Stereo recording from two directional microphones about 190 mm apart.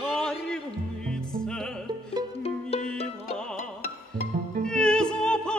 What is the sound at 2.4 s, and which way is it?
Music, 30° left (ahead or behind).